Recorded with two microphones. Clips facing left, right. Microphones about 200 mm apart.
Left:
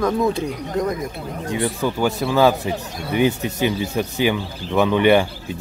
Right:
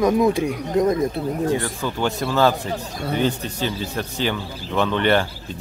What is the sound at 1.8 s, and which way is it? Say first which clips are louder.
Speech: left 3 dB; 10° left (ahead or behind).